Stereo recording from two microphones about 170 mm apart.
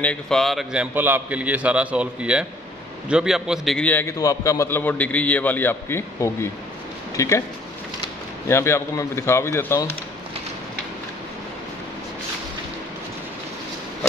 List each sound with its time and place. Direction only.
0.0 s a man's voice: 5° left (ahead or behind)
0.9 s a man's voice: 10° right (ahead or behind); by 7.4 s 15° left (ahead or behind)
8.5 s a man's voice: 15° left (ahead or behind)